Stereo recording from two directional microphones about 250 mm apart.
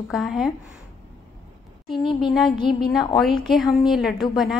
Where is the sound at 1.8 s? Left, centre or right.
Centre.